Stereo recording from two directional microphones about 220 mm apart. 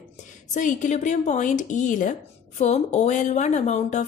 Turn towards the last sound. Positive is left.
turn(degrees=30)  # may be behind; listen again after turning